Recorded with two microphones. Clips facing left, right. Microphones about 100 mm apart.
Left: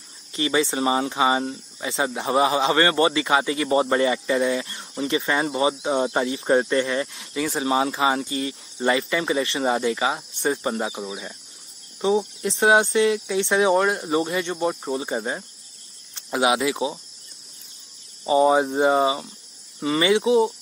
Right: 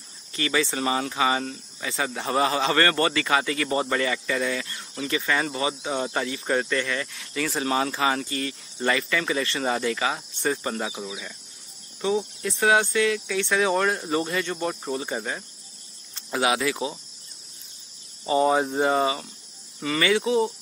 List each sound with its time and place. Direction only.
0.3 s a man's voice: 25° left (ahead or behind)
7.3 s a man's voice: 10° left (ahead or behind)
11.1 s a man's voice: 35° left (ahead or behind)
13.8 s speech: 10° left (ahead or behind)
18.2 s speech: 15° left (ahead or behind)
18.6 s speech: 5° left (ahead or behind)
18.9 s a man's voice: 20° left (ahead or behind)